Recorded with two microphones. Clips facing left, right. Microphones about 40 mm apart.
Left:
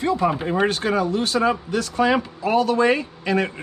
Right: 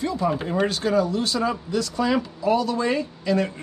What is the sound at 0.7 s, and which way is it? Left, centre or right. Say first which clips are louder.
Speech: left 1 dB; left.